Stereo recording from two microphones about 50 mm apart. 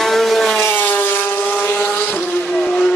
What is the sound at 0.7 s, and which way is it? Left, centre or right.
Vehicle, left.